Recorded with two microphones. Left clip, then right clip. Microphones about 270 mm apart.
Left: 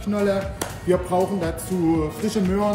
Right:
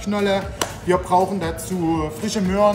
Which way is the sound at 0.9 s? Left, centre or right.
Centre.